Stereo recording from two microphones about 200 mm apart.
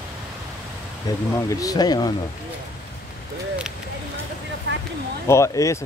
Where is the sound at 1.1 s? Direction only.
20° left (ahead or behind).